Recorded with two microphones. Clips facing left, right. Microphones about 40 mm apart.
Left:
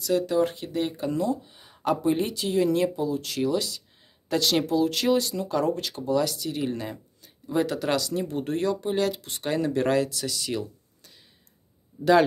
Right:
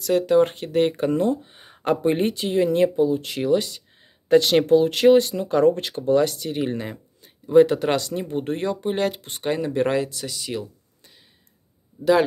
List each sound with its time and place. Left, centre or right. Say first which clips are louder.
0.0 s speech: right 5 dB; right; by 11.1 s centre